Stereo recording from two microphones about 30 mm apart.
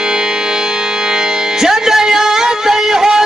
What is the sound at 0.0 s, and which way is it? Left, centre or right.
Music, right.